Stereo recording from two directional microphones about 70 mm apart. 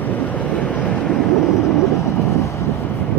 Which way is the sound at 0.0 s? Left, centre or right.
Left.